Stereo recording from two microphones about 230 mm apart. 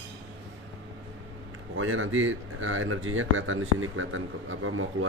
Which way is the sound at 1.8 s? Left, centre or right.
Right.